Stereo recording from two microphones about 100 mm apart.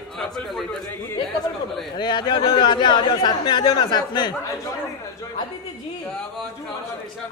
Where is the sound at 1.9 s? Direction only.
50° left (ahead or behind).